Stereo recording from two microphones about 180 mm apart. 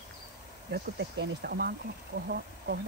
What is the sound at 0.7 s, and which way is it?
Speech, 65° right (ahead or behind).